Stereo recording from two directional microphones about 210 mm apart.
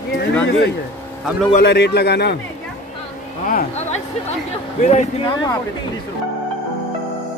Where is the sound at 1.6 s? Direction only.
50° left (ahead or behind).